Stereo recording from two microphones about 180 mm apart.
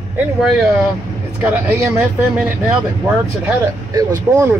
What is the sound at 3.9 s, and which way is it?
Speech, 15° right (ahead or behind).